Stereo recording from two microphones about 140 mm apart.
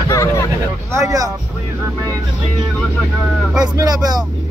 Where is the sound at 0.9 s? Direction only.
25° right (ahead or behind).